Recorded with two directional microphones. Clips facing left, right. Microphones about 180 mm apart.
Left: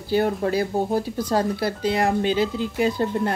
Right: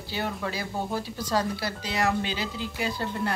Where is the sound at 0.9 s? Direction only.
55° left (ahead or behind).